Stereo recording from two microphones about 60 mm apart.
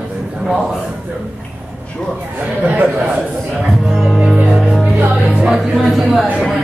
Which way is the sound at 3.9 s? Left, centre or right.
Centre.